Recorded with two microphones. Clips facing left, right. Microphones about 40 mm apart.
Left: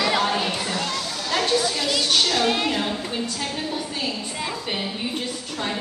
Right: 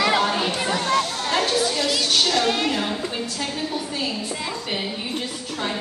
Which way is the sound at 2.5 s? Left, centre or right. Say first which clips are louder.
Even; centre.